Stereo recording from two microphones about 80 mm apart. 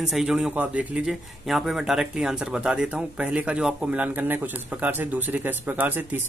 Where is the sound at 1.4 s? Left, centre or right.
Centre.